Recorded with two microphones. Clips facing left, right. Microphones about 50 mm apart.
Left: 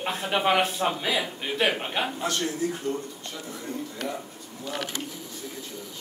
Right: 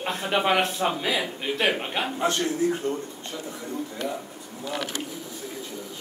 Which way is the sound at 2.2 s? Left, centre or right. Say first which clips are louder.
Right 4 dB; right.